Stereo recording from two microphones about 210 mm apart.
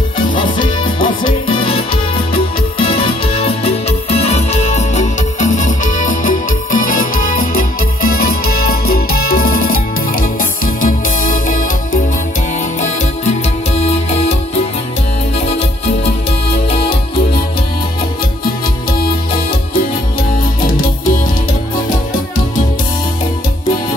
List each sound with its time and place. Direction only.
0.3 s music: 20° left (ahead or behind)
2.8 s music: 25° left (ahead or behind)
13.7 s music: 30° left (ahead or behind)